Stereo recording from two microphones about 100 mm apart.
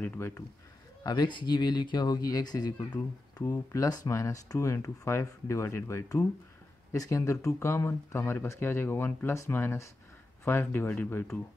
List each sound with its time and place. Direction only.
0.0 s speech: 15° left (ahead or behind)
1.0 s speech: 45° left (ahead or behind); by 11.3 s 20° left (ahead or behind)